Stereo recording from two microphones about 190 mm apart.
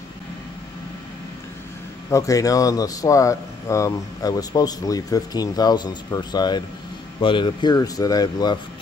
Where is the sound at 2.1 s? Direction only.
15° left (ahead or behind).